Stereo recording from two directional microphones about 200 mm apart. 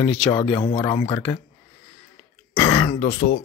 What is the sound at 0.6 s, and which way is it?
Speech, 20° left (ahead or behind).